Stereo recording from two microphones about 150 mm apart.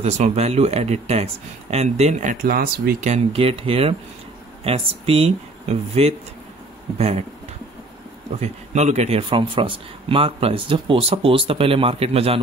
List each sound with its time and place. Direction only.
0.0 s speech: 45° right (ahead or behind)
2.4 s speech: 90° right
3.0 s speech: 45° right (ahead or behind)
8.4 s speech: 50° right (ahead or behind)